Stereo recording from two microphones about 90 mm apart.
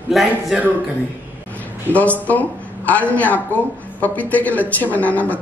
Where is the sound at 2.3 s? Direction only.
15° left (ahead or behind).